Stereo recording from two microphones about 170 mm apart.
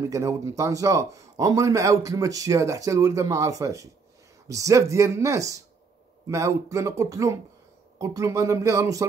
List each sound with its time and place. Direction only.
0.1 s speech: 20° right (ahead or behind)